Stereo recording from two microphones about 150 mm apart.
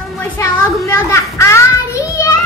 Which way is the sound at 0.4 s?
20° left (ahead or behind).